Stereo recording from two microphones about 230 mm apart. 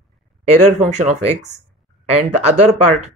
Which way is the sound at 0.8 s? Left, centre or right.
Right.